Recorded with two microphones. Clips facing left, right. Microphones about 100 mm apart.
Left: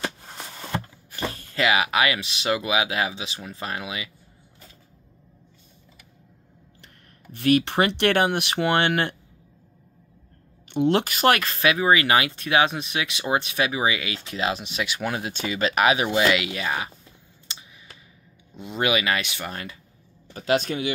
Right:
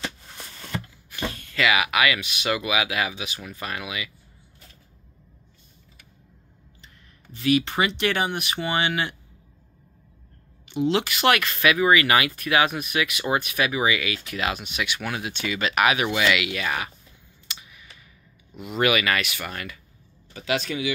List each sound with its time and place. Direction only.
1.1 s speech: 35° left (ahead or behind)
7.3 s speech: 55° left (ahead or behind)
10.7 s speech: 55° left (ahead or behind); by 16.9 s 25° left (ahead or behind)
17.5 s clicking: 30° left (ahead or behind)
18.6 s speech: 25° left (ahead or behind)
20.3 s speech: 40° left (ahead or behind)